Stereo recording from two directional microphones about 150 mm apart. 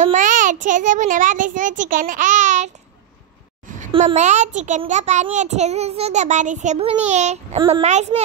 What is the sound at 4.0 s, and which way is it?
A child's voice, 50° right (ahead or behind).